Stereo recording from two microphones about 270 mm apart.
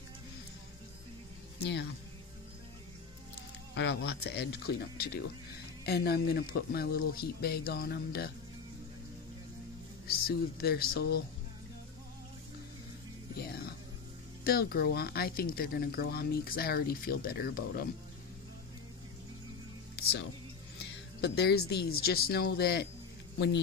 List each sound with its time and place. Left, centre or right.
1.6 s speech: left
3.7 s speech: left
10.0 s speech: left
13.5 s music: left
14.4 s speech: left
20.0 s music: left
21.2 s speech: left